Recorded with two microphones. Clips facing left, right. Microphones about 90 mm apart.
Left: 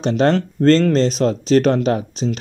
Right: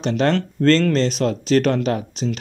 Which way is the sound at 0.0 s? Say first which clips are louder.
Left 3 dB; 25° left (ahead or behind).